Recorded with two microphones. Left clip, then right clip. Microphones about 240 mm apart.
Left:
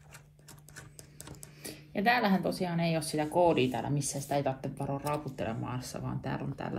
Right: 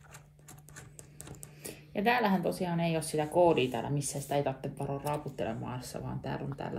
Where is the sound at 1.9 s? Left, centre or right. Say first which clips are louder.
Left 1 dB; left.